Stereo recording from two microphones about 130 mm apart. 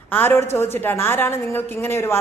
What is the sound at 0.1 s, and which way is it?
A woman's voice, 15° left (ahead or behind).